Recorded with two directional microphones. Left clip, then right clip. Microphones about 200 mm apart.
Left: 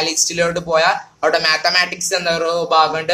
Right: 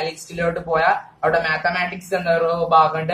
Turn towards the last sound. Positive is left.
turn(degrees=50)  # may be behind; listen again after turning